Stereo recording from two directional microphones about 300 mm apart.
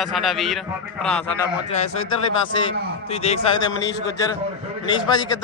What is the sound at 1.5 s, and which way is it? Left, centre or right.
Speech, left.